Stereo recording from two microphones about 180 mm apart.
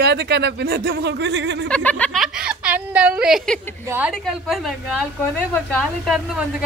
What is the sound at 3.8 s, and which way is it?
Speech, 10° right (ahead or behind).